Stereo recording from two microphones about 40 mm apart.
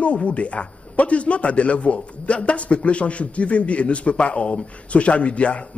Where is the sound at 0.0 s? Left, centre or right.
Left.